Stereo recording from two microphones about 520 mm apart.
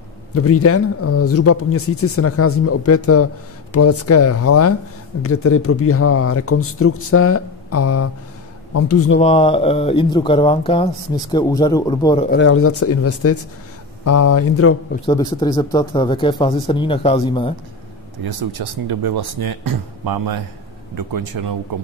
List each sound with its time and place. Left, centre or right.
0.3 s speech: left
9.2 s speech: centre
12.4 s speech: left
15.0 s speech: centre
18.2 s speech: right